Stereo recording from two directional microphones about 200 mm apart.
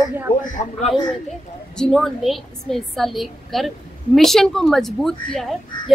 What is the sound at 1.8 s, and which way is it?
A woman's voice, centre (ahead or behind).